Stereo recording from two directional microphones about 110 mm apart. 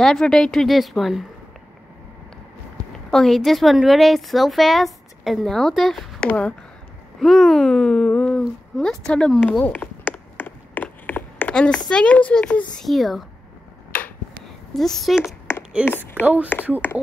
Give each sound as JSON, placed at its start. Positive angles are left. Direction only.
{"t": 0.0, "sound": "a woman's voice", "side_deg": 5}
{"t": 3.1, "sound": "a woman's voice", "side_deg": 5}
{"t": 9.4, "sound": "a sound", "side_deg": 15}
{"t": 11.9, "sound": "a child's voice", "side_deg": 10}
{"t": 14.7, "sound": "a woman's voice", "side_deg": 5}
{"t": 15.2, "sound": "a sound", "side_deg": 20}
{"t": 16.5, "sound": "speech", "side_deg": 20}